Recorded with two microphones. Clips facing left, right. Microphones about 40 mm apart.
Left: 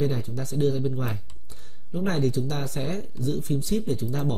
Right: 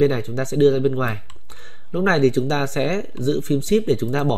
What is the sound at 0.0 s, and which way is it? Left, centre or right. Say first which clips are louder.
Speech: right 9 dB; right.